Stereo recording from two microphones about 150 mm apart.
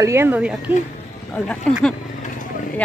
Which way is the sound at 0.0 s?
15° right (ahead or behind).